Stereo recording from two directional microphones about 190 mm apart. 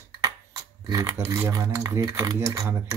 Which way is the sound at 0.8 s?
20° right (ahead or behind).